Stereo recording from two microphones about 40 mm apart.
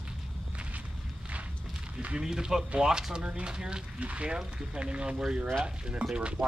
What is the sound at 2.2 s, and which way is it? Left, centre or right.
Speech, centre.